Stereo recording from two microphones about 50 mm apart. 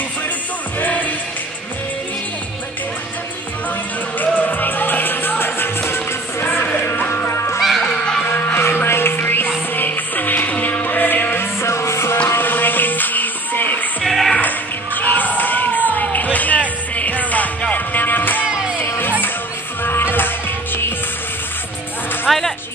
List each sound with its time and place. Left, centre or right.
0.7 s music: left
4.2 s music: left
7.8 s music: centre
8.5 s music: left
11.3 s music: left
12.4 s music: left
14.0 s music: centre
15.0 s a sound: left
15.9 s music: left
18.4 s music: right
19.8 s music: left
22.3 s music: centre